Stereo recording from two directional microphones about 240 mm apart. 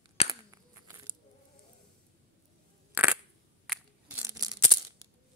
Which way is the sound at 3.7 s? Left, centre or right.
Centre.